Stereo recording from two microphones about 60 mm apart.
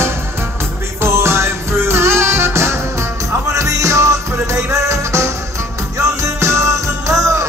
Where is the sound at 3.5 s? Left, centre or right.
Right.